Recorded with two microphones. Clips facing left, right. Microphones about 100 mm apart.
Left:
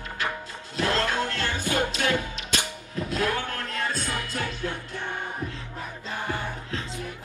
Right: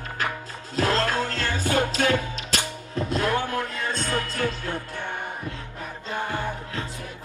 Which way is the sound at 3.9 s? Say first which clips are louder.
Right 3 dB; 15° left (ahead or behind).